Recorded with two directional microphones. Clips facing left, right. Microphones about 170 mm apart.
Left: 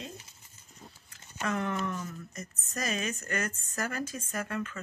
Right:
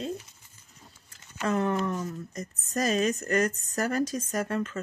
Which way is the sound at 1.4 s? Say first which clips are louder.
Right 5 dB; 35° right (ahead or behind).